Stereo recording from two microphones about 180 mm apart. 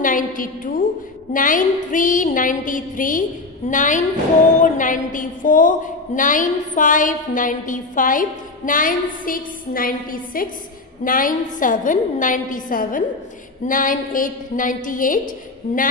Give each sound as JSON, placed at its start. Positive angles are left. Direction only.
{"t": 0.0, "sound": "a woman's voice", "side_deg": 50}